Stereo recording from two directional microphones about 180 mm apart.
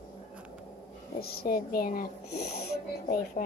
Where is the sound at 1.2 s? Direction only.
60° left (ahead or behind).